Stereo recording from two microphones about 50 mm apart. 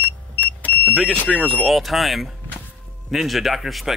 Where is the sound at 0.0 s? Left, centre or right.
Left.